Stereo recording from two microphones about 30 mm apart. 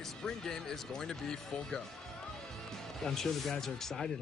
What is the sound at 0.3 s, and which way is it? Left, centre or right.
Speech, centre.